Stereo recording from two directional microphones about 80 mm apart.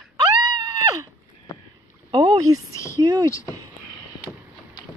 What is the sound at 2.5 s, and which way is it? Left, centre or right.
Speech, right.